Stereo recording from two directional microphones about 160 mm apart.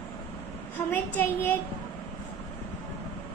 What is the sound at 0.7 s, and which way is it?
Speech, 15° left (ahead or behind).